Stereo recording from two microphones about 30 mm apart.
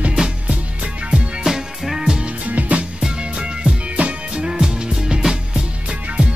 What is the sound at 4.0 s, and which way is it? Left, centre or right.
Music, right.